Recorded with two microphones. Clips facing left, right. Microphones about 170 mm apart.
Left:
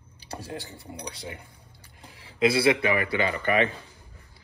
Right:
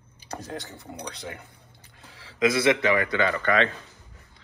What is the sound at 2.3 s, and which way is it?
Speech, 30° left (ahead or behind).